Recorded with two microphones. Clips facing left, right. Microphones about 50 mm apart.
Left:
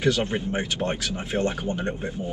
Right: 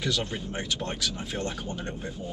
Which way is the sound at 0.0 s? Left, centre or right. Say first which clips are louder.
Left 7 dB; left.